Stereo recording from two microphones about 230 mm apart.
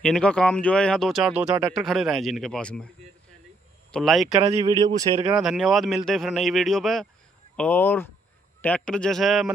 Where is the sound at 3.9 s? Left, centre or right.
Centre.